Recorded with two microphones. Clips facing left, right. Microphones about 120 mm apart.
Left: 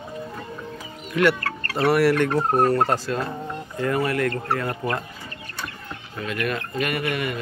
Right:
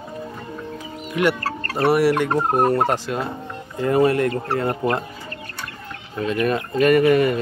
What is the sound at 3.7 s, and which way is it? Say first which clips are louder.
Speech: right 6 dB; 25° right (ahead or behind).